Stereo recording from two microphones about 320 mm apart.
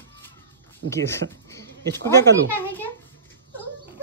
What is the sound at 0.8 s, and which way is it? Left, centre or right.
Speech, right.